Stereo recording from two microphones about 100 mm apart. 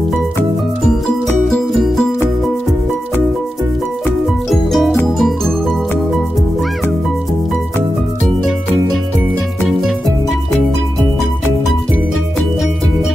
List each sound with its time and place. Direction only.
1.0 s music: 5° left (ahead or behind)
4.5 s music: centre (ahead or behind)
9.7 s music: centre (ahead or behind)